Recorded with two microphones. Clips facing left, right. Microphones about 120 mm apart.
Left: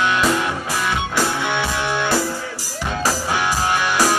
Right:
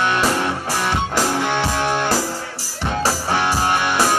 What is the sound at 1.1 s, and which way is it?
Music, 35° right (ahead or behind).